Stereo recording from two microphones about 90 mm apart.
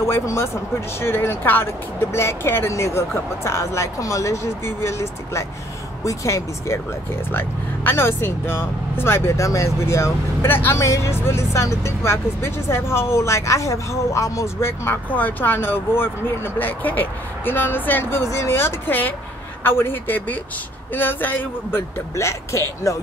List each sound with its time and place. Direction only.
0.0 s speech: 30° left (ahead or behind)
18.2 s speech: 35° left (ahead or behind)